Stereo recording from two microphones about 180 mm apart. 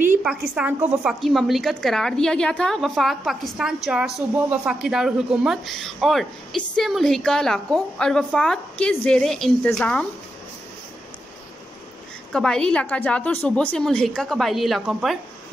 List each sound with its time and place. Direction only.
0.2 s a woman's voice: 5° right (ahead or behind)
12.3 s a woman's voice: 5° left (ahead or behind)